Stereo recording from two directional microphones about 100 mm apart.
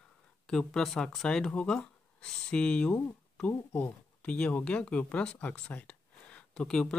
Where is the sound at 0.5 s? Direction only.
5° left (ahead or behind).